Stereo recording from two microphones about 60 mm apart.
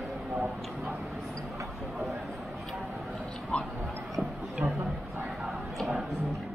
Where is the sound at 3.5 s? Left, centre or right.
Centre.